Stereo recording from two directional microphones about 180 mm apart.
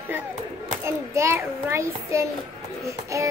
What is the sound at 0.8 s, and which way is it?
Child singing, 15° right (ahead or behind).